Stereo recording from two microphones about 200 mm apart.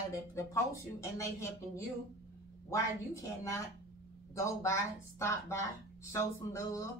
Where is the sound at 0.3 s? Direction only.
15° left (ahead or behind).